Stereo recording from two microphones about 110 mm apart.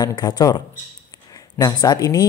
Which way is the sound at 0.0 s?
40° left (ahead or behind).